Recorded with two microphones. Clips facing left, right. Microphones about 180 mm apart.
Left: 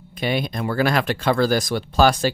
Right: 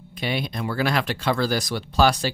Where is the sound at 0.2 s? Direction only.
45° left (ahead or behind).